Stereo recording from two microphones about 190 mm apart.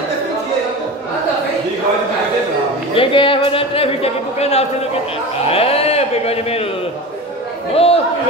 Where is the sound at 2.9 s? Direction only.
25° left (ahead or behind).